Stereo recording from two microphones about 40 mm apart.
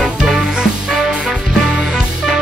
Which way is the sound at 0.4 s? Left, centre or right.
Centre.